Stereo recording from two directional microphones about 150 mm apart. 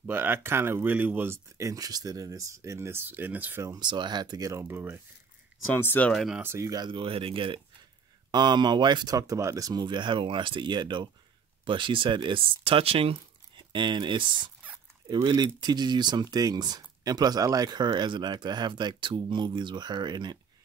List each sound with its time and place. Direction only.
0.0 s speech: 15° right (ahead or behind)
5.7 s speech: 15° left (ahead or behind)
6.1 s speech: centre (ahead or behind)
6.4 s speech: 20° right (ahead or behind)